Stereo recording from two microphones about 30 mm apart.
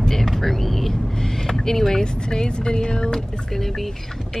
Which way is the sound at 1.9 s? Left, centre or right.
Left.